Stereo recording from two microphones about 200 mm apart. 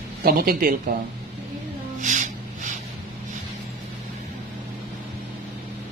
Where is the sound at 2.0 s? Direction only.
40° right (ahead or behind).